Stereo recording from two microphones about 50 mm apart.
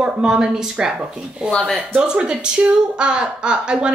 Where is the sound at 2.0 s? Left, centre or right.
Centre.